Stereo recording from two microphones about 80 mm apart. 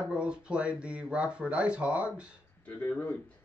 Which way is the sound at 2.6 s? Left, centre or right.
Left.